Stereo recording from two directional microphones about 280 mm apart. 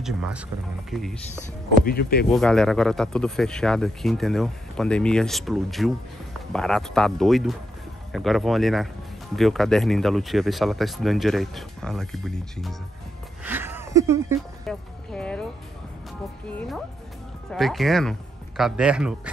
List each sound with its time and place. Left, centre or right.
0.0 s speech: centre
1.9 s speech: left
2.2 s speech: centre
13.4 s a sound: centre
14.7 s speech: centre
16.4 s speech: centre